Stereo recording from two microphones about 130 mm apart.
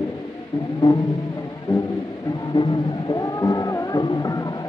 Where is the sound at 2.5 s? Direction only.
35° left (ahead or behind).